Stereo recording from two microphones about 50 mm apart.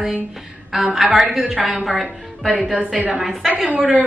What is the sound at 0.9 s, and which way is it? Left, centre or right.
Speech, centre.